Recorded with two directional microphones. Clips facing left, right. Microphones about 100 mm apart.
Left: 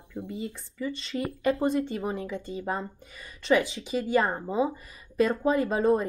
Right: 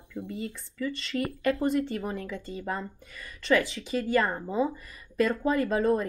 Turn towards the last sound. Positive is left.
turn(degrees=20)  # may be behind; listen again after turning